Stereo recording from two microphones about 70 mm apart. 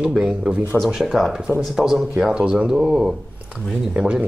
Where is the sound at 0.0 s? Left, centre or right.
Centre.